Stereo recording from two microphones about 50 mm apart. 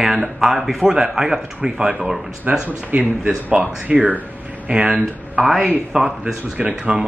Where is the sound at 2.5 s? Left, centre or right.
Right.